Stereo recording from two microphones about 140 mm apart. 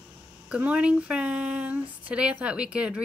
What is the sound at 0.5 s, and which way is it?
Speech, 10° right (ahead or behind).